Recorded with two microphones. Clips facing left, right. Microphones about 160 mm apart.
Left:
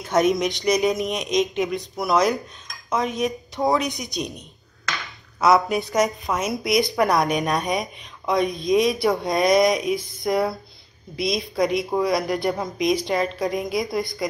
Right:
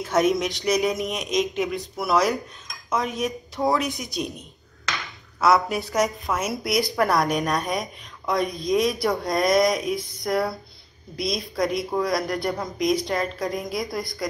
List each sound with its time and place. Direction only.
0.0 s a woman's voice: centre (ahead or behind)
5.4 s a woman's voice: centre (ahead or behind)